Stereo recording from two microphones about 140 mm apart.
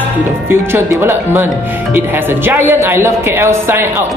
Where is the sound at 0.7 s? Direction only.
15° right (ahead or behind).